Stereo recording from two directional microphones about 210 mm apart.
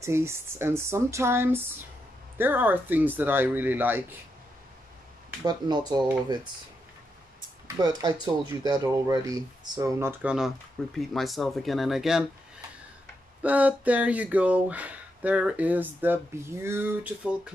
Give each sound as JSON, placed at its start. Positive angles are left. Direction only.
{"t": 0.0, "sound": "speech", "side_deg": -10}
{"t": 5.4, "sound": "speech", "side_deg": -20}
{"t": 7.6, "sound": "speech", "side_deg": -20}
{"t": 13.4, "sound": "speech", "side_deg": -5}